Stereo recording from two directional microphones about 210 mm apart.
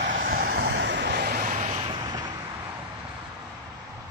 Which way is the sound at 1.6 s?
30° right (ahead or behind).